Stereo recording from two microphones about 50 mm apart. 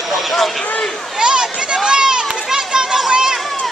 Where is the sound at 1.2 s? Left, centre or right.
Centre.